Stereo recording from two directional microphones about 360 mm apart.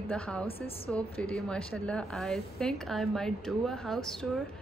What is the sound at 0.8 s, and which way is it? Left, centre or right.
Speech, centre.